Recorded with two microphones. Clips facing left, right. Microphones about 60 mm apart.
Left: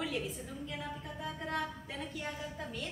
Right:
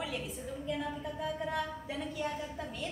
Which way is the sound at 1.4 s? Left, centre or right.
Centre.